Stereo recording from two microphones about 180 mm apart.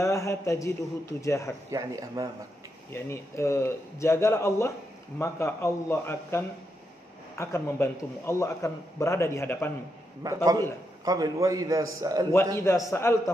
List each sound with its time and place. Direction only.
0.0 s a man's voice: 15° left (ahead or behind)
1.7 s a man's voice: 20° right (ahead or behind)
2.9 s a man's voice: 15° left (ahead or behind)
10.2 s a man's voice: 20° right (ahead or behind)
12.5 s a man's voice: 15° left (ahead or behind)